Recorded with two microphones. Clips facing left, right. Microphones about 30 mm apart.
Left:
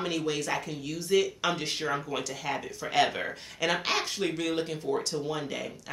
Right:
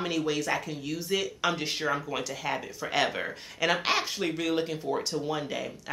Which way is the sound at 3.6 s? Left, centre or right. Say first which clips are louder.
Right 2 dB; centre.